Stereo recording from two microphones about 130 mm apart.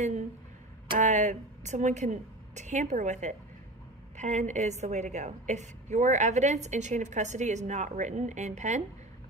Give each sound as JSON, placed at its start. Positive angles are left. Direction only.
{"t": 0.9, "sound": "a woman's voice", "side_deg": -65}